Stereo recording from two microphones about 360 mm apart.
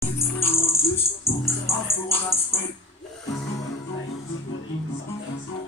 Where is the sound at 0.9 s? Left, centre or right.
Centre.